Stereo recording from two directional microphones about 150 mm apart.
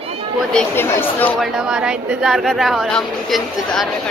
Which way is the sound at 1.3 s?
5° right (ahead or behind).